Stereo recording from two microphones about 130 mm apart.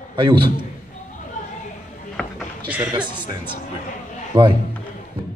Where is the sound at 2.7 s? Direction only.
10° right (ahead or behind).